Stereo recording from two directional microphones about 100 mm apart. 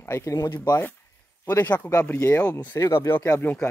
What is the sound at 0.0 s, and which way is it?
Speech, 25° left (ahead or behind).